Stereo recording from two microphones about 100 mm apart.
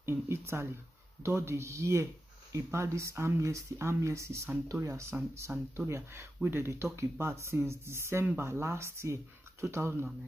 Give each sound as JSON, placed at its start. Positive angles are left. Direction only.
{"t": 0.0, "sound": "speech", "side_deg": -25}
{"t": 5.1, "sound": "speech", "side_deg": -20}